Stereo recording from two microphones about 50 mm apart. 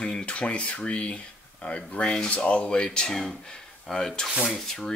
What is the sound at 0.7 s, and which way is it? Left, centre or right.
Dishes, left.